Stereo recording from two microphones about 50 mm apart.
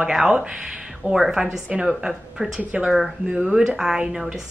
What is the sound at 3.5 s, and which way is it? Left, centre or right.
Speech, centre.